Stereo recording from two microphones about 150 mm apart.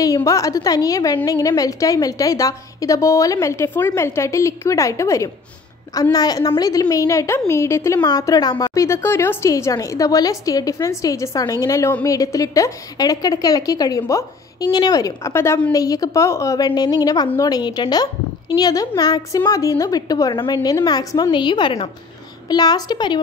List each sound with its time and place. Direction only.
0.0 s a woman's voice: 20° left (ahead or behind)